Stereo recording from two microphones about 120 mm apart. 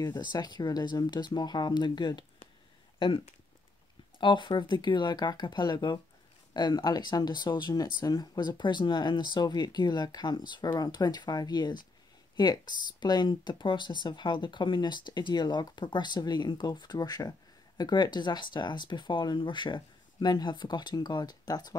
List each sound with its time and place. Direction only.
0.0 s speech: 35° left (ahead or behind)
4.2 s speech: 40° left (ahead or behind)